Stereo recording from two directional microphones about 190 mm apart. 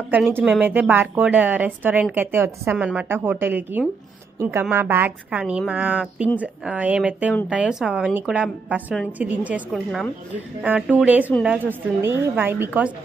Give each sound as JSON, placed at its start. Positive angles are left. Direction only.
{"t": 0.1, "sound": "a woman's voice", "side_deg": -10}